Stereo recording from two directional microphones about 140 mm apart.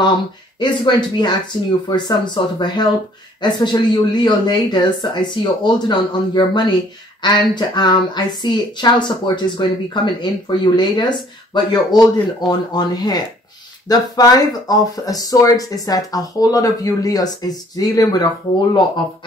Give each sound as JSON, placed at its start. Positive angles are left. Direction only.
{"t": 0.6, "sound": "speech", "side_deg": 30}